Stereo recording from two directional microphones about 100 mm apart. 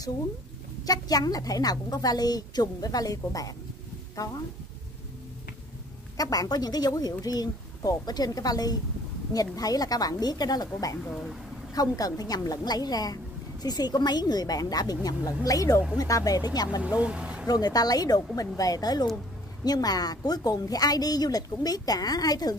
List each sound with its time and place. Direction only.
0.8 s a woman's voice: 40° left (ahead or behind)
6.1 s a woman's voice: 35° left (ahead or behind)
16.8 s speech: 15° right (ahead or behind)
17.5 s a woman's voice: 40° left (ahead or behind)